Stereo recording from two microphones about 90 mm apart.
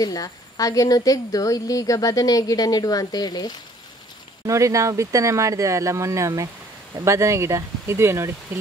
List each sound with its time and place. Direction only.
0.0 s speech: 45° left (ahead or behind)
4.5 s speech: 35° right (ahead or behind)